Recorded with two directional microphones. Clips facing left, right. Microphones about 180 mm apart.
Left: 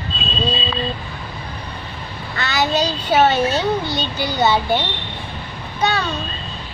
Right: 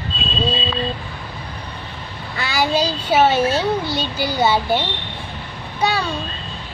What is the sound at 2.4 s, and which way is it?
A child's voice, 10° right (ahead or behind).